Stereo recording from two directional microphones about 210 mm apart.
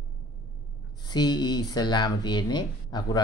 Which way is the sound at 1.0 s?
20° left (ahead or behind).